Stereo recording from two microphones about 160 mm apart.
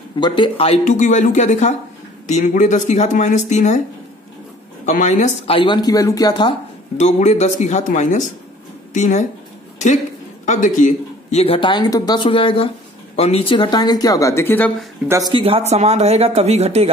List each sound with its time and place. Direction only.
0.2 s speech: 30° left (ahead or behind)
0.8 s speech: 50° left (ahead or behind)
4.8 s speech: 50° left (ahead or behind)
5.5 s speech: 30° left (ahead or behind)
7.0 s speech: 45° left (ahead or behind)
10.4 s speech: 50° left (ahead or behind); by 14.7 s 15° left (ahead or behind)
15.0 s speech: 20° right (ahead or behind)
15.3 s speech: 35° right (ahead or behind)